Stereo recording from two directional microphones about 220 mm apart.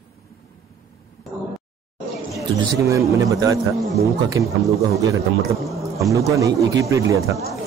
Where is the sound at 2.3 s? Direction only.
15° right (ahead or behind).